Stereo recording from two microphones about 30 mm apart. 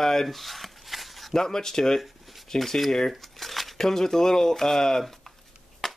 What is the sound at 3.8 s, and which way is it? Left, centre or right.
Speech, centre.